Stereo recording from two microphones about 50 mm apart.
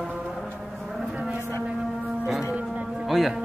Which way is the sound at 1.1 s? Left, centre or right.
Right.